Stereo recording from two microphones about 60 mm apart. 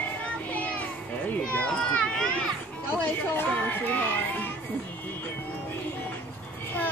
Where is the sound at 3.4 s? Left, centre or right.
Left.